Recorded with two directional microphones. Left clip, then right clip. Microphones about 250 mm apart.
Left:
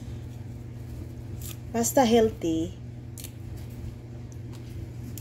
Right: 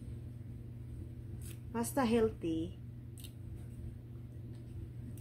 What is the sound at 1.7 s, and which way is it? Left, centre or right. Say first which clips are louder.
Speech: left 12 dB; centre.